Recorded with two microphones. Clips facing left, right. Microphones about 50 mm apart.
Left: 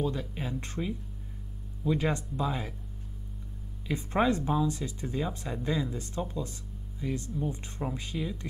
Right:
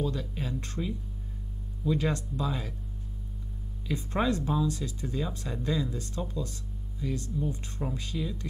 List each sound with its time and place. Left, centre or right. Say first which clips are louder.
0.0 s speech: even; left
3.8 s speech: left 2 dB; left